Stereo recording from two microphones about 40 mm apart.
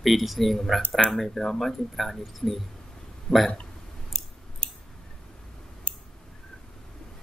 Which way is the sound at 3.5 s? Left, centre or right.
Left.